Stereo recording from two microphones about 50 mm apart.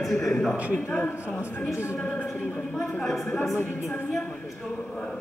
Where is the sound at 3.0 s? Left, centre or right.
Centre.